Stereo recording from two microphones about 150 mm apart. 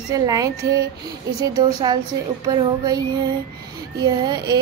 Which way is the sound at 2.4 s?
25° right (ahead or behind).